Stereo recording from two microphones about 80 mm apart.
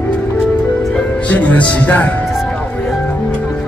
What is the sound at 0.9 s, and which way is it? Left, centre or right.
Speech, centre.